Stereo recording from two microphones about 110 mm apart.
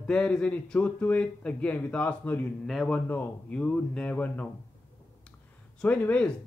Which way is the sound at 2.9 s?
15° left (ahead or behind).